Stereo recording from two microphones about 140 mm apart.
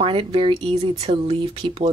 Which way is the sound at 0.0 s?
40° right (ahead or behind).